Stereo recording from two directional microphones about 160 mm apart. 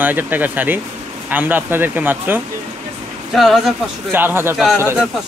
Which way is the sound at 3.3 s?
Centre (ahead or behind).